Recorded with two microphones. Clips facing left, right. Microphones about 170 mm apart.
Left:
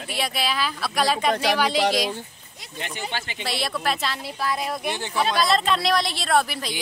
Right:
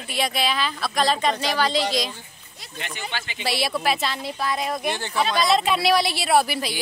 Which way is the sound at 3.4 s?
5° right (ahead or behind).